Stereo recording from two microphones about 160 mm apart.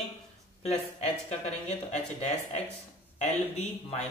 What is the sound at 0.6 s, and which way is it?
Speech, 40° left (ahead or behind).